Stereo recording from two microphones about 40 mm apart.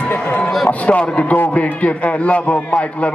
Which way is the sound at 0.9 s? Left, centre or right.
Left.